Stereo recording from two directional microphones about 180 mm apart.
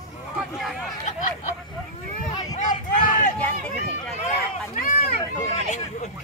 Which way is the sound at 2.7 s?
45° left (ahead or behind).